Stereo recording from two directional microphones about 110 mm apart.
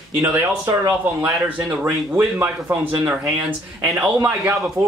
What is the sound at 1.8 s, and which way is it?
Speech, 15° right (ahead or behind).